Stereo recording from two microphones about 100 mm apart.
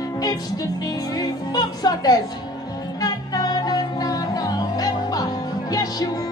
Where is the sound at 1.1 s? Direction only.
40° left (ahead or behind).